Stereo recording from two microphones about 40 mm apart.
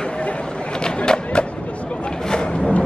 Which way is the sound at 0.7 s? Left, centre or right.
Left.